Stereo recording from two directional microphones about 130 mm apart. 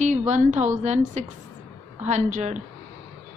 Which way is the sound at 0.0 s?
70° right (ahead or behind).